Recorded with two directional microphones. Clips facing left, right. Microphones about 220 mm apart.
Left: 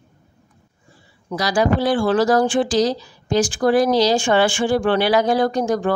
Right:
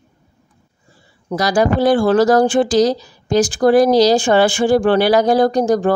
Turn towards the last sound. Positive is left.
turn(degrees=-35)  # may be behind; listen again after turning